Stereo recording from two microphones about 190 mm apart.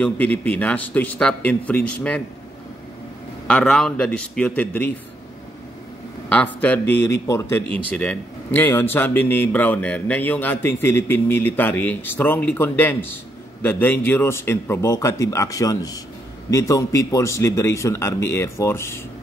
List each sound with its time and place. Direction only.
0.0 s speech: 5° left (ahead or behind)
3.4 s a man's voice: 5° left (ahead or behind)
6.2 s speech: 10° left (ahead or behind)